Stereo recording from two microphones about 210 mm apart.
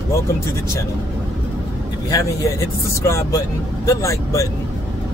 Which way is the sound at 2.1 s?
15° left (ahead or behind).